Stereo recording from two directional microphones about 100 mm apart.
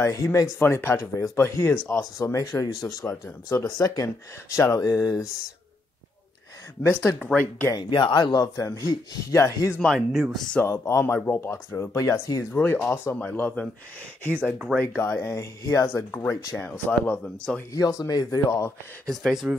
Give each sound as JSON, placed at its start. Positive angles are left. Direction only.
{"t": 0.0, "sound": "speech", "side_deg": 30}
{"t": 0.6, "sound": "speech", "side_deg": 25}
{"t": 2.1, "sound": "speech", "side_deg": 35}
{"t": 6.8, "sound": "speech", "side_deg": 25}
{"t": 7.2, "sound": "speech", "side_deg": 15}
{"t": 7.7, "sound": "speech", "side_deg": 50}
{"t": 9.8, "sound": "speech", "side_deg": 5}
{"t": 10.6, "sound": "speech", "side_deg": 30}
{"t": 15.0, "sound": "speech", "side_deg": 30}
{"t": 16.5, "sound": "speech", "side_deg": 15}
{"t": 17.7, "sound": "speech", "side_deg": 35}
{"t": 19.0, "sound": "speech", "side_deg": 0}